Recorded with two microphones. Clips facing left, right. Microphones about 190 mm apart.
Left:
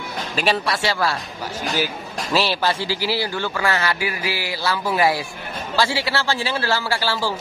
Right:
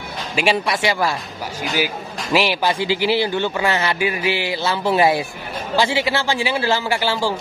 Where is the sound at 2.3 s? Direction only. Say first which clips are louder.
Right 2 dB; 15° right (ahead or behind).